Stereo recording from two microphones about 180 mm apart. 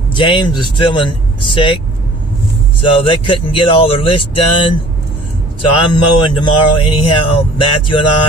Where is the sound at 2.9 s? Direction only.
30° left (ahead or behind).